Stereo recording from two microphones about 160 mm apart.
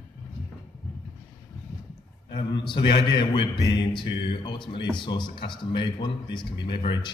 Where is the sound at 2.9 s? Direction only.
30° left (ahead or behind).